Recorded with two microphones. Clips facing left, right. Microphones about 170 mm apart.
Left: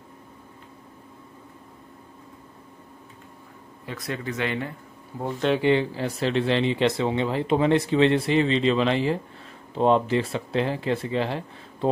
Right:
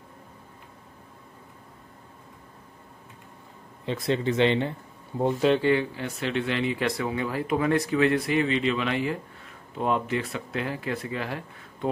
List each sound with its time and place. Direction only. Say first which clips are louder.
3.8 s speech: right 6 dB; 25° right (ahead or behind)
5.6 s speech: left 2 dB; 25° left (ahead or behind)